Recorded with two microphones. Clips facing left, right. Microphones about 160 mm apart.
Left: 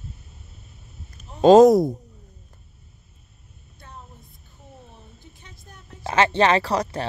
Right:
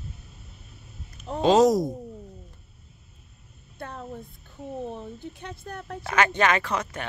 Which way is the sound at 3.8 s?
75° right (ahead or behind).